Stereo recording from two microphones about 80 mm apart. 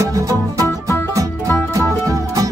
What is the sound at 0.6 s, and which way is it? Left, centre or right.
Music, left.